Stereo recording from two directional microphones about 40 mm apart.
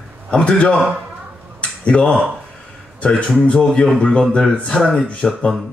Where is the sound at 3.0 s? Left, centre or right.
Left.